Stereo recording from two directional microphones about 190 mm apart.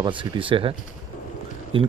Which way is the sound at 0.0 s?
25° right (ahead or behind).